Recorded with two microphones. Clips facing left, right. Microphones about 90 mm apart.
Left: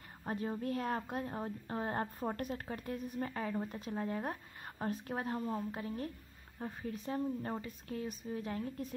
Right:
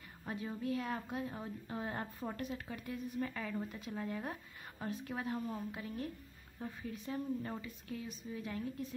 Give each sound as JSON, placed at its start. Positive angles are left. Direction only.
{"t": 0.3, "sound": "a woman's voice", "side_deg": 40}